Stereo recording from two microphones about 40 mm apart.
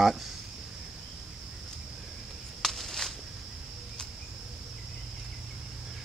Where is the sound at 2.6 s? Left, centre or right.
Centre.